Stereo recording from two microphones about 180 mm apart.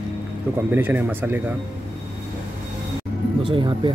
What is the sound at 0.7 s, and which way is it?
Speech, 10° right (ahead or behind).